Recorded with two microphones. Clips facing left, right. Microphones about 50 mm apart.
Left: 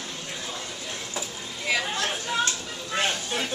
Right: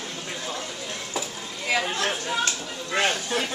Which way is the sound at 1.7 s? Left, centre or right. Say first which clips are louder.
Right 2 dB; centre.